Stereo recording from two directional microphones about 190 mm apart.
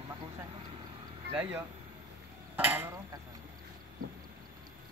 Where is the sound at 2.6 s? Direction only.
10° right (ahead or behind).